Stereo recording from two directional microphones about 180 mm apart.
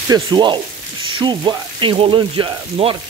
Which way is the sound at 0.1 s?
25° right (ahead or behind).